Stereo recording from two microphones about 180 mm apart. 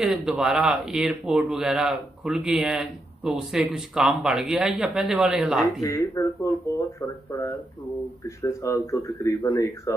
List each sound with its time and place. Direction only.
0.0 s speech: centre (ahead or behind)
5.8 s speech: 20° left (ahead or behind)